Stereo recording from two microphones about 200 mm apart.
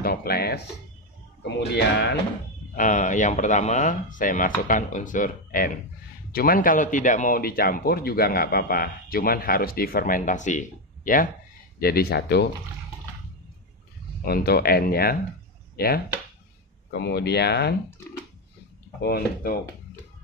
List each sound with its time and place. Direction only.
0.0 s speech: 50° left (ahead or behind)
1.8 s speech: 60° left (ahead or behind)
2.7 s a man's voice: 40° left (ahead or behind)
14.2 s a man's voice: 50° left (ahead or behind)
18.9 s a man's voice: 50° left (ahead or behind)